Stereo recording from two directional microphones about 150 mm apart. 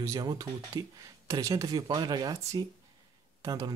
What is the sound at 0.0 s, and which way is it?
Speech, 25° right (ahead or behind).